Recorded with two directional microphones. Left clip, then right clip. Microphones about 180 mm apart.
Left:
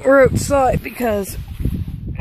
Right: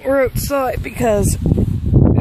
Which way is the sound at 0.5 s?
Centre (ahead or behind).